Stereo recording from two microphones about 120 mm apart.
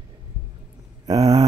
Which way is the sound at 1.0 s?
30° right (ahead or behind).